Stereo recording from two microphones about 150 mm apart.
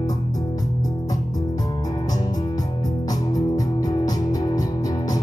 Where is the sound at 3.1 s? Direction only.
25° left (ahead or behind).